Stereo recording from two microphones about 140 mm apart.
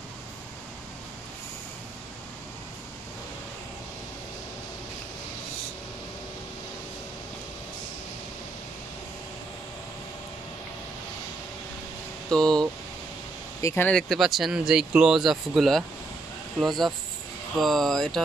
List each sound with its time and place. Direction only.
12.3 s speech: 5° left (ahead or behind)
13.6 s speech: 20° left (ahead or behind)
13.8 s speech: 5° left (ahead or behind)